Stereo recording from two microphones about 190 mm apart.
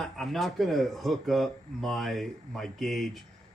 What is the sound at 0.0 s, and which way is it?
Speech, centre (ahead or behind).